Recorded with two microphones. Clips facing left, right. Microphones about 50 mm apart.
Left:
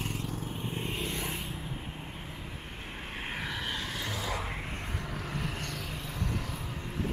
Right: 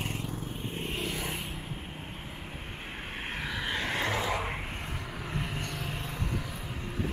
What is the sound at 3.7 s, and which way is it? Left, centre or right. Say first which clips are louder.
Vehicle: right 5 dB; right.